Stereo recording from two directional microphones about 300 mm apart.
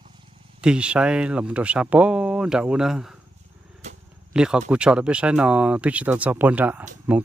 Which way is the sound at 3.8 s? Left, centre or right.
Right.